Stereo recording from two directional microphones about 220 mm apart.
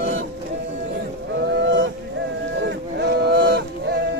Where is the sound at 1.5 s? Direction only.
55° right (ahead or behind).